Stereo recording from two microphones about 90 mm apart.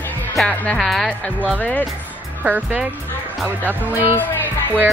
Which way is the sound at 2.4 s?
15° right (ahead or behind).